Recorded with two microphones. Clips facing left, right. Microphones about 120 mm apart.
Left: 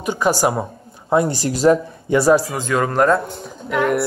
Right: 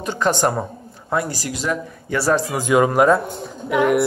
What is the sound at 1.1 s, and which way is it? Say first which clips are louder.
Speech: left 6 dB; 25° left (ahead or behind).